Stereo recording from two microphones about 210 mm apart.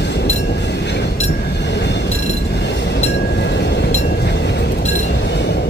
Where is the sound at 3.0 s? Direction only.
55° left (ahead or behind).